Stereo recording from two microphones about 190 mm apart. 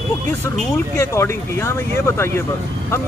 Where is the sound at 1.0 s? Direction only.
15° left (ahead or behind).